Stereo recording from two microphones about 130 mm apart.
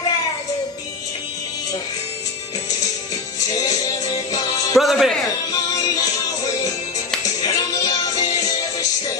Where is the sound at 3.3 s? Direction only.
30° left (ahead or behind).